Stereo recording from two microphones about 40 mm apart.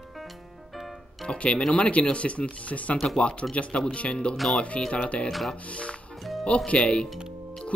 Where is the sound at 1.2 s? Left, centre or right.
Left.